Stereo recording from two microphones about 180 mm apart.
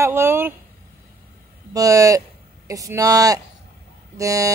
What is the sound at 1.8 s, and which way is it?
Speech, 20° right (ahead or behind).